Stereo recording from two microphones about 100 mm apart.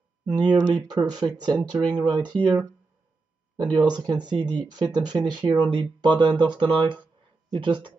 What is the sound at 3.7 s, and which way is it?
Speech, 45° right (ahead or behind).